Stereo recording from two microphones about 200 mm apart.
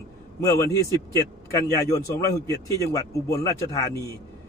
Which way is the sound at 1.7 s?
15° left (ahead or behind).